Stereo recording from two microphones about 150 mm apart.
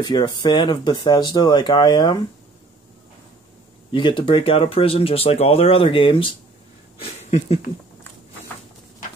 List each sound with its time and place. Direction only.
0.0 s speech: 30° left (ahead or behind)
3.9 s speech: 35° left (ahead or behind)